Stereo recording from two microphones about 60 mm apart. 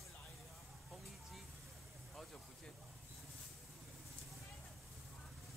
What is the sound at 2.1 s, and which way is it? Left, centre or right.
Vehicle, centre.